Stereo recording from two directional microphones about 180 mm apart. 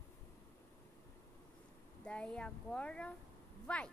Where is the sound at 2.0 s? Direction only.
5° left (ahead or behind).